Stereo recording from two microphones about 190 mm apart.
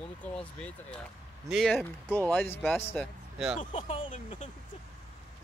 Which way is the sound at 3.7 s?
35° left (ahead or behind).